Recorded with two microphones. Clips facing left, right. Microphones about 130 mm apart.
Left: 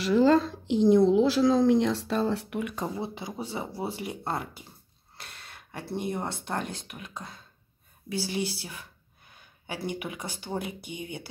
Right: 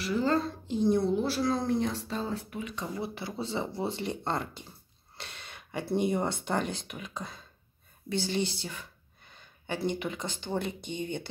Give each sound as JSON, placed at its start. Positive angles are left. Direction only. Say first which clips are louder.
{"t": 0.0, "sound": "a woman's voice", "louder": "left 7 dB", "side_deg": 90}
{"t": 3.0, "sound": "speech", "louder": "left 1 dB", "side_deg": 15}